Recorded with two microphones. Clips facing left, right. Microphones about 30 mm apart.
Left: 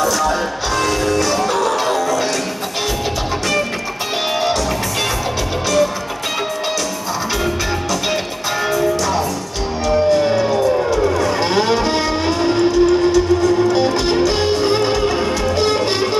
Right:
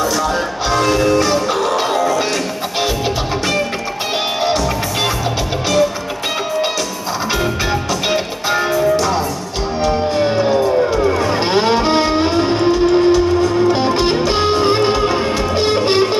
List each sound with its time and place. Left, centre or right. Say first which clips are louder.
0.2 s music: even; centre
8.1 s music: right 3 dB; right
13.7 s music: right 1 dB; right